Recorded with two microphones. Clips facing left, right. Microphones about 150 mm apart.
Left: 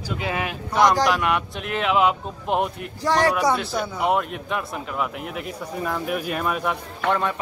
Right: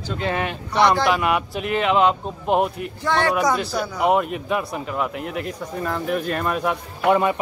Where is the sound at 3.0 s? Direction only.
35° left (ahead or behind).